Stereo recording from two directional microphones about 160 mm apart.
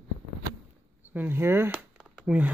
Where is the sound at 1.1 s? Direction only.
10° right (ahead or behind).